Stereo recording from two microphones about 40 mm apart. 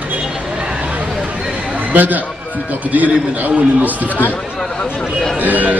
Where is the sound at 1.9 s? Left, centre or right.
Right.